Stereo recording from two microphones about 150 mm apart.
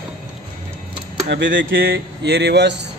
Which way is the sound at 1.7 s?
90° right.